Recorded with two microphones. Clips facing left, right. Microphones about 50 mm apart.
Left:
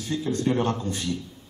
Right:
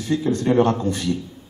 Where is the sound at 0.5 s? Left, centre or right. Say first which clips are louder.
Right 8 dB; centre.